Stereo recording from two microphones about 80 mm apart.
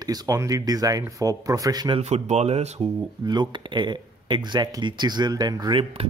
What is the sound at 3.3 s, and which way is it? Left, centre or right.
Speech, right.